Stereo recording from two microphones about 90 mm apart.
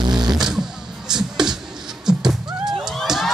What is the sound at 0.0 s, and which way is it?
Vehicle, 55° right (ahead or behind).